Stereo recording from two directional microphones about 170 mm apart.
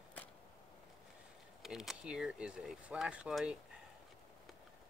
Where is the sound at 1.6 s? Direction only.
Centre (ahead or behind).